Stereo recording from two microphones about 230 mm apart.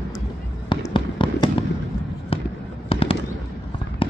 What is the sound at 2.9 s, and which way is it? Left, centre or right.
Fireworks, left.